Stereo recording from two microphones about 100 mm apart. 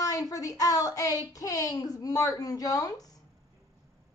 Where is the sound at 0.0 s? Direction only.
35° left (ahead or behind).